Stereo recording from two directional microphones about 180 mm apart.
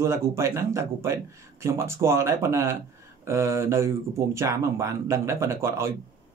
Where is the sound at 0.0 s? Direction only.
15° right (ahead or behind).